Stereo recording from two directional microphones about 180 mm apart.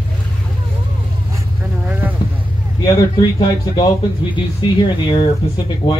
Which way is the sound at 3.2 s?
25° left (ahead or behind).